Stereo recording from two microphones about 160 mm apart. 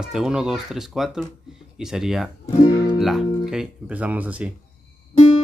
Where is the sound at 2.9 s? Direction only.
Centre (ahead or behind).